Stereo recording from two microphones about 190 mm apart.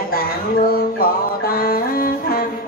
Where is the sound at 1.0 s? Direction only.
50° left (ahead or behind).